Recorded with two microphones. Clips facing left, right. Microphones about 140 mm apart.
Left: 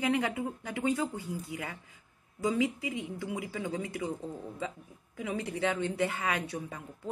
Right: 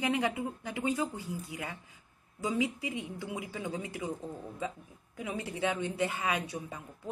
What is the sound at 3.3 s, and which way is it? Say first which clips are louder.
Speech: left 2 dB; 20° right (ahead or behind).